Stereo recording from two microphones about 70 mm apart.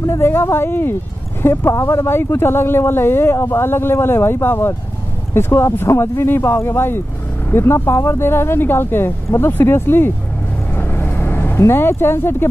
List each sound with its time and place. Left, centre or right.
0.2 s speech: left
10.7 s vehicle: left